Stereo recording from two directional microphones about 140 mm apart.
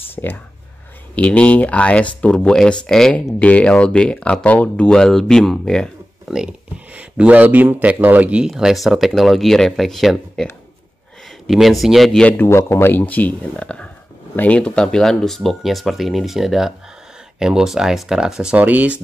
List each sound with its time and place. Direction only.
0.2 s speech: 20° left (ahead or behind); by 10.4 s centre (ahead or behind)
11.4 s speech: centre (ahead or behind)